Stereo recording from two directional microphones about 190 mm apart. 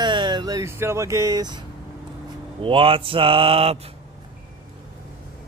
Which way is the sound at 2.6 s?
30° right (ahead or behind).